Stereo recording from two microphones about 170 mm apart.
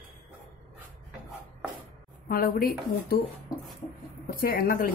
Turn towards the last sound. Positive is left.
turn(degrees=55)  # may be behind; listen again after turning